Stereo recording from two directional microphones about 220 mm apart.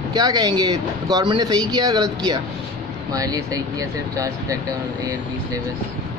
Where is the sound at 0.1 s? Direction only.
15° right (ahead or behind).